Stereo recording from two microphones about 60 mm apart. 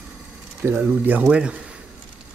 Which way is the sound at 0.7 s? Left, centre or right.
Right.